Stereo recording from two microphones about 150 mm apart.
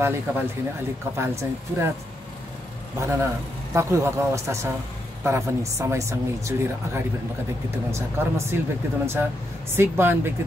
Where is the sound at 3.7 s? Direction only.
15° right (ahead or behind).